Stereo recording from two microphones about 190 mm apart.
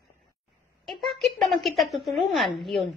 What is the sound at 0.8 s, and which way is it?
A woman's voice, centre (ahead or behind).